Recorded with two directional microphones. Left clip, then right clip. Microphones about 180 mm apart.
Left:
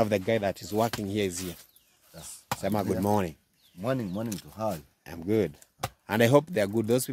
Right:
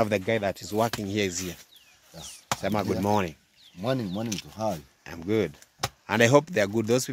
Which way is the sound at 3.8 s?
5° right (ahead or behind).